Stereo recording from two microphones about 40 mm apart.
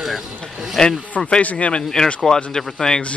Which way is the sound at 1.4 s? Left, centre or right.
Left.